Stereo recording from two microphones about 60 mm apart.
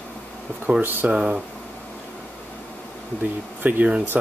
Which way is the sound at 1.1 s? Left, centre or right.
Centre.